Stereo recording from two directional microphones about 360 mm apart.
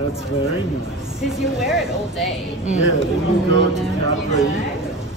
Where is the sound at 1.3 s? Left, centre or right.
Centre.